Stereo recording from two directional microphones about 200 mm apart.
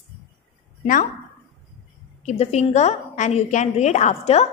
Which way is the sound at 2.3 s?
35° left (ahead or behind).